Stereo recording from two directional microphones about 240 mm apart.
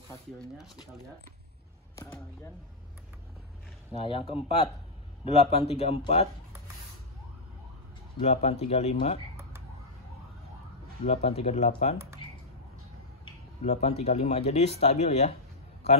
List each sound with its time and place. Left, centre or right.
0.1 s speech: centre
2.0 s speech: centre
4.0 s speech: left
8.2 s speech: left
11.2 s speech: left
12.2 s computer keyboard: left
13.2 s speech: left